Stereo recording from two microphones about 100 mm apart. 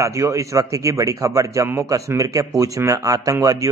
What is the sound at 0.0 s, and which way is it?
Speech, 30° right (ahead or behind).